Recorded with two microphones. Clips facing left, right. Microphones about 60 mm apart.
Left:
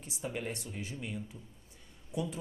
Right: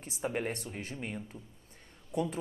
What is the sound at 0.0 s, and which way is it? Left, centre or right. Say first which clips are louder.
Speech: right 4 dB; right.